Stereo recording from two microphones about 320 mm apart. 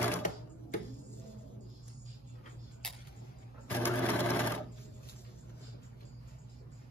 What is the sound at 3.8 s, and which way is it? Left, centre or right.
Sewing machine, centre.